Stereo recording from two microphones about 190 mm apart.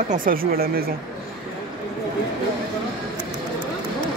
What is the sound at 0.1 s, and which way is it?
Speech, 45° right (ahead or behind).